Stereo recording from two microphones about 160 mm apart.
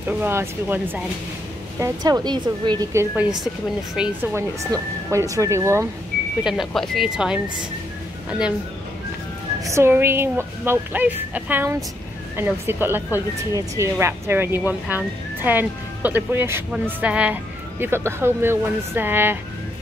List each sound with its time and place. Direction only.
0.2 s speech: 15° right (ahead or behind)
6.4 s speech: centre (ahead or behind)
9.7 s speech: 15° right (ahead or behind)